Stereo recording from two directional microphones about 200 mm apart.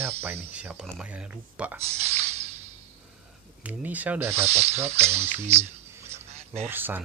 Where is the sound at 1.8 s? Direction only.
30° right (ahead or behind).